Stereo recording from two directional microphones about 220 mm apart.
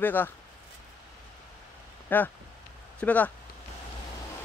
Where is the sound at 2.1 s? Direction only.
10° left (ahead or behind).